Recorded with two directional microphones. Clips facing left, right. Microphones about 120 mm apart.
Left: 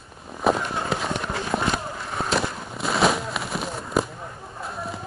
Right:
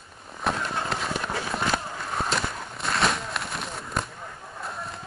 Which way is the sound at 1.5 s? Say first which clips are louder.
Left 5 dB; 40° left (ahead or behind).